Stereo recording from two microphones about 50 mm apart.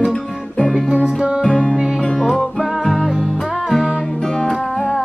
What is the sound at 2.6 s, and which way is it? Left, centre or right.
Music, centre.